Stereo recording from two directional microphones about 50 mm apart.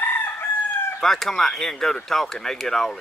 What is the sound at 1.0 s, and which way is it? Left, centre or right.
Speech, centre.